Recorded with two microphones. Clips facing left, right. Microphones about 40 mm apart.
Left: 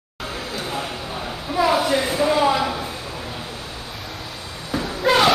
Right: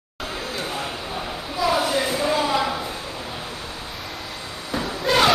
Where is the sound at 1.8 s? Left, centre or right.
Centre.